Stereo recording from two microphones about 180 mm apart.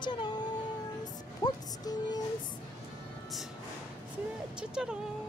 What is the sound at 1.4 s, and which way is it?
Speech, 20° left (ahead or behind).